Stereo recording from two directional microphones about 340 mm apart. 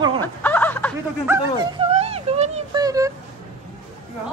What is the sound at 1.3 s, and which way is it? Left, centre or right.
Speech, centre.